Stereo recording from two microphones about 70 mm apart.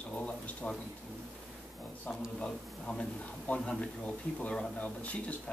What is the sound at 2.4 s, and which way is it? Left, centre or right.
Speech, centre.